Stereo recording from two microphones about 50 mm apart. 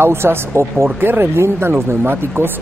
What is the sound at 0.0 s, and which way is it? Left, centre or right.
Speech, right.